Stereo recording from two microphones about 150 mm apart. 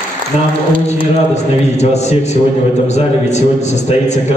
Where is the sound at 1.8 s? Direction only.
45° left (ahead or behind).